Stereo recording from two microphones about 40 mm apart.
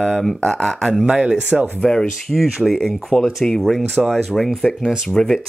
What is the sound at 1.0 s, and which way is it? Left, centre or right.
Speech, right.